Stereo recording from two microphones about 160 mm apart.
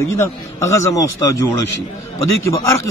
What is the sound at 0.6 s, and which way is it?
A man's voice, 15° left (ahead or behind).